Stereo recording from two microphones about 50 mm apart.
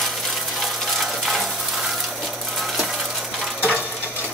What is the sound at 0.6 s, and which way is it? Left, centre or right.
Frying, centre.